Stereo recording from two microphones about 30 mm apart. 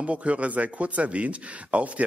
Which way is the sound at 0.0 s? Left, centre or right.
Right.